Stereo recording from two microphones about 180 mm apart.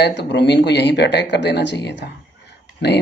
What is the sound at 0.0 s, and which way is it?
Speech, 70° left (ahead or behind).